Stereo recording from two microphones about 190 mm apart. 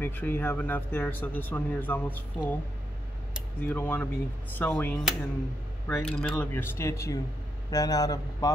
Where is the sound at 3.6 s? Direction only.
10° left (ahead or behind).